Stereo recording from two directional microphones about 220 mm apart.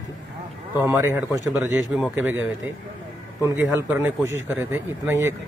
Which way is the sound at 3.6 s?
10° right (ahead or behind).